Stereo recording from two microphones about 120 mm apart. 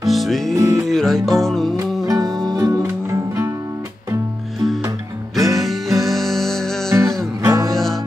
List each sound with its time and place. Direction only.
0.1 s music: centre (ahead or behind)
0.6 s music: 25° right (ahead or behind)
0.8 s music: centre (ahead or behind)
2.0 s music: 30° right (ahead or behind)
5.3 s music: centre (ahead or behind)
6.9 s music: 25° right (ahead or behind)
7.7 s music: centre (ahead or behind)